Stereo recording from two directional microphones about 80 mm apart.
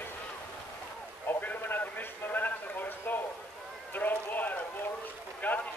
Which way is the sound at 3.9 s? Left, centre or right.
Left.